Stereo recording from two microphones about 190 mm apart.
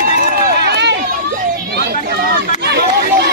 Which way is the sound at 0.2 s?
55° right (ahead or behind).